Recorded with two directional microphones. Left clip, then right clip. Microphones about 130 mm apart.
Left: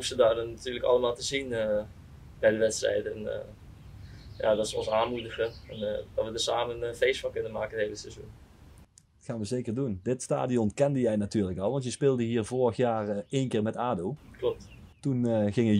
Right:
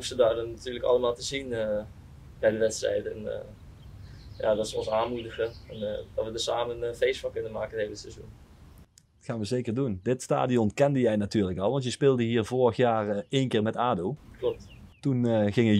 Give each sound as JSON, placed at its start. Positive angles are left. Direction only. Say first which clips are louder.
{"t": 0.0, "sound": "speech", "louder": "even", "side_deg": 0}
{"t": 9.2, "sound": "speech", "louder": "right 3 dB", "side_deg": -20}
{"t": 14.4, "sound": "speech", "louder": "right 1 dB", "side_deg": -5}
{"t": 15.0, "sound": "speech", "louder": "right 2 dB", "side_deg": -20}